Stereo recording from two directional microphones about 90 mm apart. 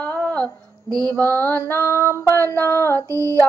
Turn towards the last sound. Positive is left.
turn(degrees=-35)  # may be behind; listen again after turning